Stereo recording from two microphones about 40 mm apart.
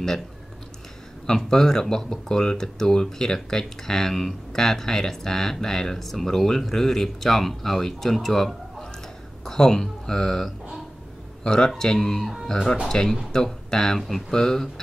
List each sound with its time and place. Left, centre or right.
1.2 s speech: centre